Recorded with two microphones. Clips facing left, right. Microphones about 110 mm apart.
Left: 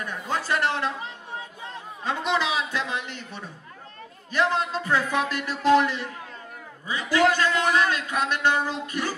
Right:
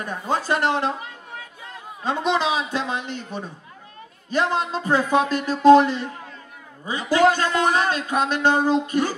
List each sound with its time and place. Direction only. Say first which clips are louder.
0.0 s speech: right 4 dB; 30° right (ahead or behind)
2.0 s a man's voice: right 4 dB; 25° right (ahead or behind)